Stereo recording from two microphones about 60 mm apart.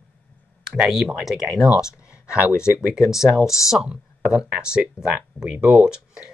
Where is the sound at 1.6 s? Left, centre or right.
Left.